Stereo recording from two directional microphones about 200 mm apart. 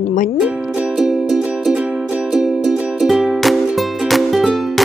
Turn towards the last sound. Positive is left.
turn(degrees=0)  # may be behind; listen again after turning